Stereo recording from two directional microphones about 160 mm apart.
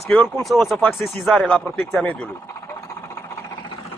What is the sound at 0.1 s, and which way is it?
Speech, 5° left (ahead or behind).